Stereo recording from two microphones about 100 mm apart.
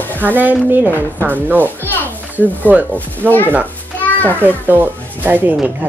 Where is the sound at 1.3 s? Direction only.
20° right (ahead or behind).